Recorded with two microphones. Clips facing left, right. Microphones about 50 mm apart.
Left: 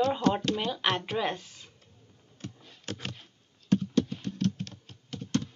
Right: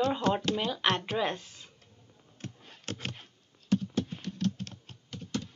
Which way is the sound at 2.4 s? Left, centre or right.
Right.